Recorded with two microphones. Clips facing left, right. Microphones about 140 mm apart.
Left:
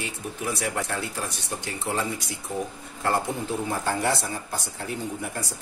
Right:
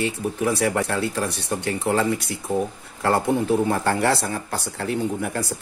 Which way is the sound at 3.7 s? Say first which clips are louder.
Right 5 dB; 65° right (ahead or behind).